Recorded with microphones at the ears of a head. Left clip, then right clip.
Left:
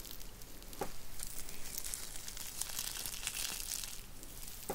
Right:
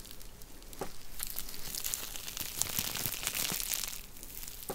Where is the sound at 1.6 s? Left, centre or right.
Right.